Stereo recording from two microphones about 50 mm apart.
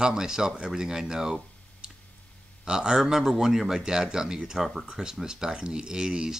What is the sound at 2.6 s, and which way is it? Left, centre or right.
A man's voice, centre.